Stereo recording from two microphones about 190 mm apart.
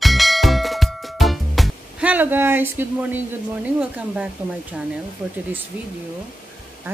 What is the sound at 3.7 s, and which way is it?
Speech, 5° right (ahead or behind).